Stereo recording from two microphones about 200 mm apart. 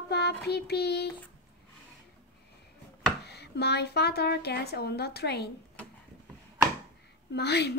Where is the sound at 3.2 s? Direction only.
55° left (ahead or behind).